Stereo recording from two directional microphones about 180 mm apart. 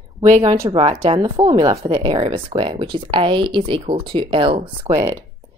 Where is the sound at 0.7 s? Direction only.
35° right (ahead or behind).